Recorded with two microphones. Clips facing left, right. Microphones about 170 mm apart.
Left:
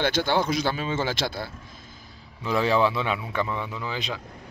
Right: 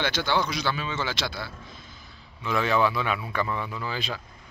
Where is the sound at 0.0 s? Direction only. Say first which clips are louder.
Left 3 dB; 50° left (ahead or behind).